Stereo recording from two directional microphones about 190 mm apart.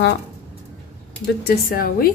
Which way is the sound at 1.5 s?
50° left (ahead or behind).